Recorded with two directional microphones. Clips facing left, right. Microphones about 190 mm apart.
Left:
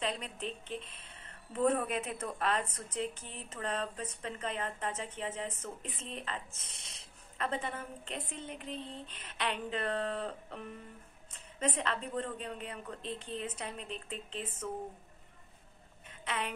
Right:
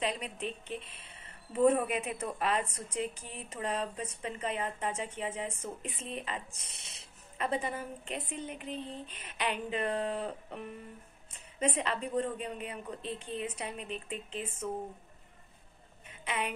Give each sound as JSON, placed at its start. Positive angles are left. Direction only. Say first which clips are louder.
{"t": 0.0, "sound": "a woman's voice", "louder": "right 2 dB", "side_deg": -10}
{"t": 8.7, "sound": "speech", "louder": "right 3 dB", "side_deg": 30}
{"t": 9.1, "sound": "a woman's voice", "louder": "right 2 dB", "side_deg": -10}
{"t": 16.1, "sound": "a sound", "louder": "right 2 dB", "side_deg": -10}